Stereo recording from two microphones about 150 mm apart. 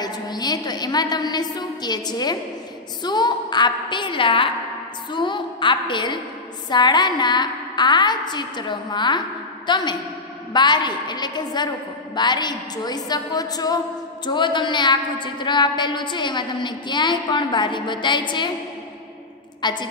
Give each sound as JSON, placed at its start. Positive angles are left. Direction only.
{"t": 0.0, "sound": "a woman's voice", "side_deg": 25}
{"t": 19.6, "sound": "a woman's voice", "side_deg": 30}